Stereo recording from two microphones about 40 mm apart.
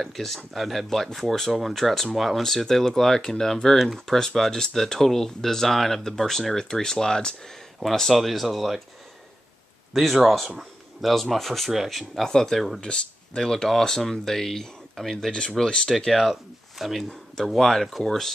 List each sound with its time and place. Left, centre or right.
0.0 s speech: centre
3.7 s speech: centre
4.0 s speech: centre
9.9 s speech: centre
11.7 s speech: centre
12.2 s speech: centre
12.8 s speech: left
16.1 s speech: centre
17.6 s speech: centre